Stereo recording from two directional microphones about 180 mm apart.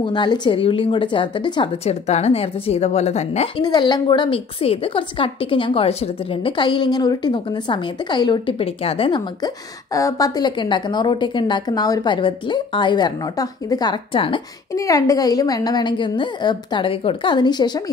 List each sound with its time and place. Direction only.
0.0 s a woman's voice: 25° left (ahead or behind)
3.6 s a woman's voice: 25° left (ahead or behind)
14.7 s a woman's voice: 20° left (ahead or behind)